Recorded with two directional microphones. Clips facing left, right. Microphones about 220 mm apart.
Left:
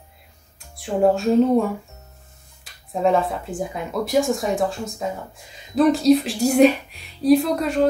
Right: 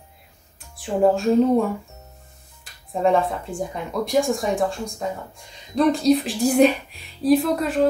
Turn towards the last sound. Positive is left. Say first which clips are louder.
# left 1 dB
turn(degrees=0)  # may be behind; listen again after turning